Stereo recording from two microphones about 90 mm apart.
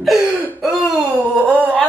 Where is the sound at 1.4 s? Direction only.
15° right (ahead or behind).